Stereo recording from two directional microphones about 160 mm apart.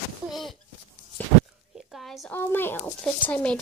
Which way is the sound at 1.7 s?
Centre (ahead or behind).